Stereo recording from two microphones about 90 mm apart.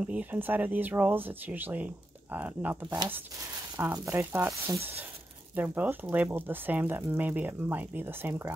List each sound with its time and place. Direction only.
0.0 s speech: 15° right (ahead or behind)
3.9 s speech: 35° right (ahead or behind)